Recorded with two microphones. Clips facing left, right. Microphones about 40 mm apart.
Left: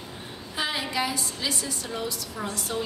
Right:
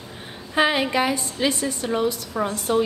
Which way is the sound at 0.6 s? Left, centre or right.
Right.